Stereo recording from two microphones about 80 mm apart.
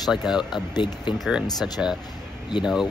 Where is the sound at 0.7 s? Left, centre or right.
Left.